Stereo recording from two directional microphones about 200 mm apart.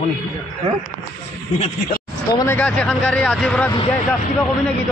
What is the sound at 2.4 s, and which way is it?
Speech, 10° left (ahead or behind).